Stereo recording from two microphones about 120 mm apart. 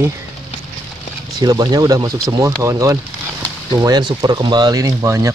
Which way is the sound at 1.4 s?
35° right (ahead or behind).